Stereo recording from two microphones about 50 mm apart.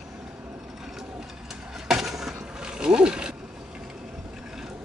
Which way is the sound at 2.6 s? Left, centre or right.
Centre.